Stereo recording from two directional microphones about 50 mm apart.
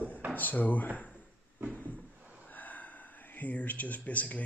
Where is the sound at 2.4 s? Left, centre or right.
Left.